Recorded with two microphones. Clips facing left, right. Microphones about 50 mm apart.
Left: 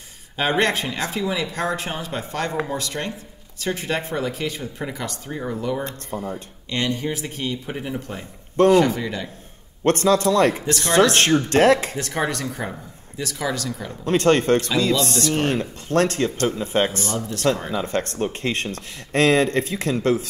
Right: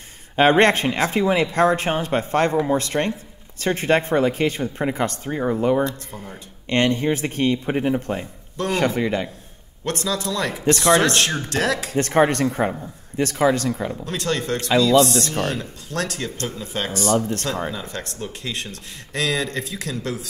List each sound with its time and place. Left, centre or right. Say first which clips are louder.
0.4 s speech: right 6 dB; right
5.9 s speech: left 2 dB; left
6.7 s speech: right 5 dB; right
9.8 s speech: left 7 dB; left
10.6 s speech: right 1 dB; right
11.4 s speech: left 7 dB; left
12.0 s speech: right 7 dB; right
14.0 s speech: left 10 dB; left
17.0 s speech: right 7 dB; right
17.7 s speech: left 7 dB; left